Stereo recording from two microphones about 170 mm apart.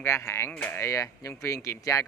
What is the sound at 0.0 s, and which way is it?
Speech, 15° left (ahead or behind).